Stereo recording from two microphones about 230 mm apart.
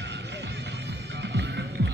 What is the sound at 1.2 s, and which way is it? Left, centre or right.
Music, right.